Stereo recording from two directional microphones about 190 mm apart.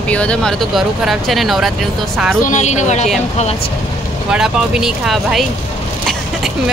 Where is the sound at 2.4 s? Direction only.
40° left (ahead or behind).